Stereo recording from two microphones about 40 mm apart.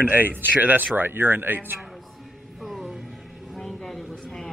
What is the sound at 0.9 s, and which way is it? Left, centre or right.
Speech, right.